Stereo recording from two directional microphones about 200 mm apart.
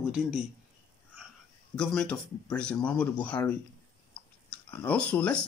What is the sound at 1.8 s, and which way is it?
Speech, 5° left (ahead or behind).